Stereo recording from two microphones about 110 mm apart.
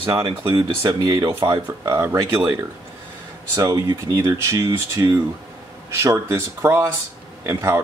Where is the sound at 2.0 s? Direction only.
25° right (ahead or behind).